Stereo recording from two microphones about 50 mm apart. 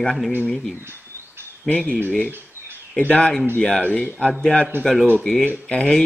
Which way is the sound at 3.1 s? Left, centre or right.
Centre.